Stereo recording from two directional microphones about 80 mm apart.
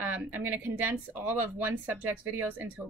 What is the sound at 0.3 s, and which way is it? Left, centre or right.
Speech, right.